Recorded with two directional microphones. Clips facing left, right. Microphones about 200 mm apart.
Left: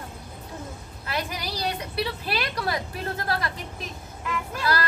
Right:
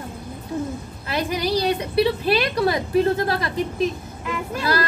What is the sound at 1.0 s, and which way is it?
A woman's voice, 25° right (ahead or behind).